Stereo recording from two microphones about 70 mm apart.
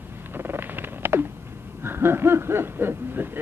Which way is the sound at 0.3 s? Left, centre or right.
Right.